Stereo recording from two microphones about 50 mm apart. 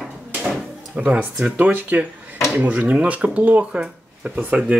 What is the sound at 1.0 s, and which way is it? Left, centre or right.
Speech, right.